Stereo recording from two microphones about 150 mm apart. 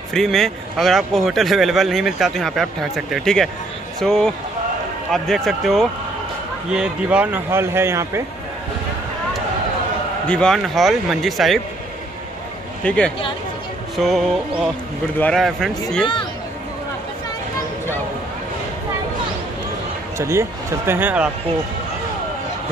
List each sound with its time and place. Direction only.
0.1 s a man's voice: centre (ahead or behind); by 8.2 s 20° right (ahead or behind)
10.2 s a man's voice: 5° left (ahead or behind)
12.8 s a man's voice: 5° left (ahead or behind)
20.2 s speech: 20° right (ahead or behind)